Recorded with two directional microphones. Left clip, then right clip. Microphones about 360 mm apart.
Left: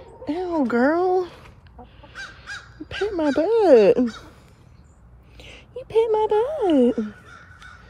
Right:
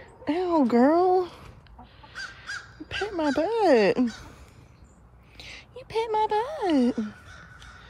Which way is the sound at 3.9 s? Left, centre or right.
Centre.